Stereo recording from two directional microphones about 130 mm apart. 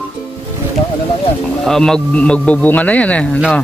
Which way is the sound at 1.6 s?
5° left (ahead or behind).